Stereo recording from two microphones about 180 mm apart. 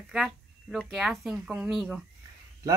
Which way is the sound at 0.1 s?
Centre (ahead or behind).